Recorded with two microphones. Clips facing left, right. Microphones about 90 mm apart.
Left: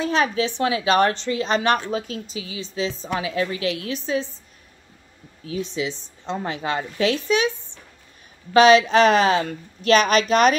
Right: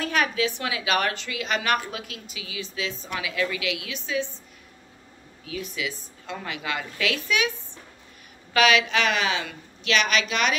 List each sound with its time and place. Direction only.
0.0 s a woman's voice: 30° left (ahead or behind)
5.4 s a woman's voice: 30° left (ahead or behind)
8.5 s a woman's voice: 35° left (ahead or behind)